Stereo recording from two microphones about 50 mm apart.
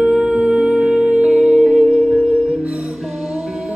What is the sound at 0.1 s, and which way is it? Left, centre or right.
Music, centre.